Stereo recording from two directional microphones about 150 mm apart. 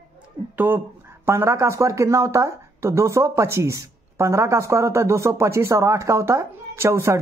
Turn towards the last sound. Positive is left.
turn(degrees=-15)  # may be behind; listen again after turning